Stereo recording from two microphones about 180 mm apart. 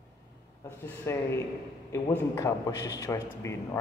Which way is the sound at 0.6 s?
15° left (ahead or behind).